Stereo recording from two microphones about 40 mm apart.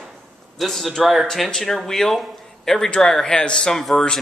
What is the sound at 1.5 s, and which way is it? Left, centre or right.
Speech, centre.